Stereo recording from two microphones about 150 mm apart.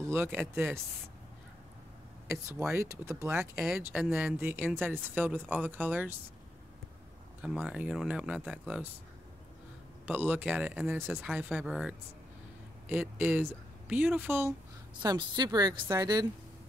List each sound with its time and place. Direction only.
0.0 s speech: 15° right (ahead or behind)
2.6 s a woman's voice: 20° right (ahead or behind)
3.3 s speech: 5° right (ahead or behind)
7.4 s speech: 5° right (ahead or behind)
10.0 s speech: 10° right (ahead or behind)
15.0 s a woman's voice: 30° right (ahead or behind)